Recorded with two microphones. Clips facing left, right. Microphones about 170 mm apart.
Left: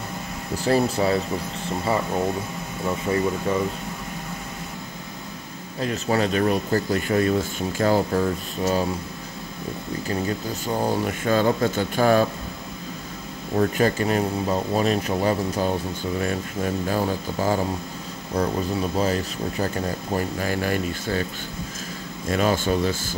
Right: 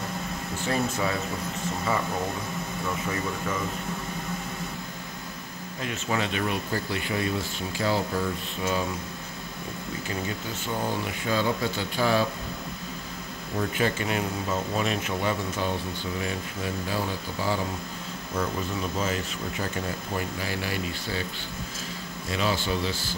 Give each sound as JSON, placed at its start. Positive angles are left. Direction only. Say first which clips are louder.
{"t": 0.7, "sound": "speech", "louder": "left 7 dB", "side_deg": 35}
{"t": 5.8, "sound": "speech", "louder": "left 6 dB", "side_deg": 35}
{"t": 10.0, "sound": "speech", "louder": "left 7 dB", "side_deg": 40}
{"t": 13.6, "sound": "speech", "louder": "left 6 dB", "side_deg": 40}
{"t": 18.3, "sound": "speech", "louder": "left 6 dB", "side_deg": 35}
{"t": 22.3, "sound": "speech", "louder": "left 6 dB", "side_deg": 50}